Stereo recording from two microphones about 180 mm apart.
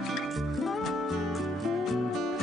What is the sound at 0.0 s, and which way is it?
Music, centre (ahead or behind).